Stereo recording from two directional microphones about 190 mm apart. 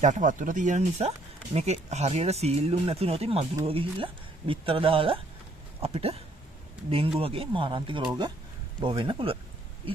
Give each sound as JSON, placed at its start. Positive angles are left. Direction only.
{"t": 0.0, "sound": "speech", "side_deg": -40}